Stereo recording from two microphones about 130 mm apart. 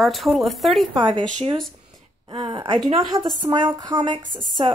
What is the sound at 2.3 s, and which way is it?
A woman's voice, 30° right (ahead or behind).